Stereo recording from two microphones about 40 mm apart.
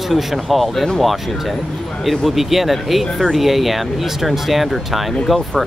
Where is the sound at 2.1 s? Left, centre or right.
Centre.